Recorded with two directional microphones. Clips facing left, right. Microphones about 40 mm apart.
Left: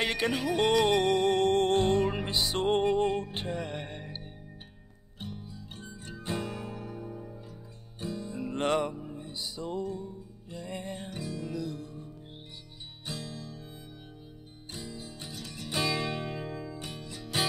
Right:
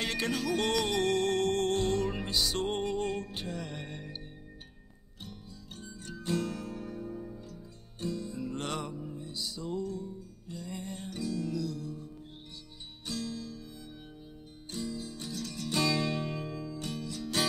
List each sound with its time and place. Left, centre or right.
0.0 s music: left
14.7 s music: left